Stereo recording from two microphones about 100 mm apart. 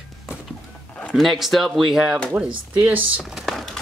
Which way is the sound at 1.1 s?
Centre (ahead or behind).